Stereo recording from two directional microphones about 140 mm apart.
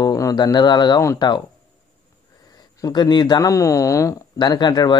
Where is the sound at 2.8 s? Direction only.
30° left (ahead or behind).